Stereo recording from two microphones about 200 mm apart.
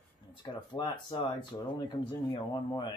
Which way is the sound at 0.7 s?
20° left (ahead or behind).